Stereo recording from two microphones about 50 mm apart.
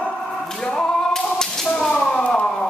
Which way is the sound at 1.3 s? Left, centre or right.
Centre.